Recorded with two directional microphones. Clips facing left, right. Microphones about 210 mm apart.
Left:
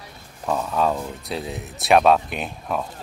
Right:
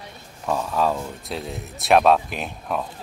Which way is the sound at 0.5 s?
Centre (ahead or behind).